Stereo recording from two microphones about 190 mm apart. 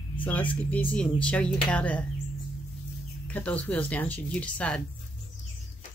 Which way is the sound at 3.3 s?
5° left (ahead or behind).